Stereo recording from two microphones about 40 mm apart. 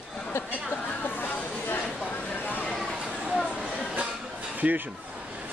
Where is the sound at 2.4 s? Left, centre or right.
Left.